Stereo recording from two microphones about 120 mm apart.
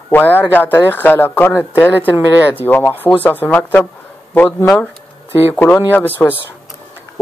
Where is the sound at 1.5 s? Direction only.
15° right (ahead or behind).